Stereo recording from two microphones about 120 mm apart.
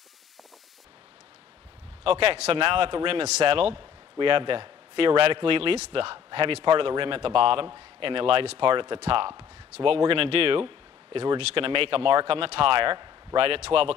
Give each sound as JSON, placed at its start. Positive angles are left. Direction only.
{"t": 2.6, "sound": "a man's voice", "side_deg": -45}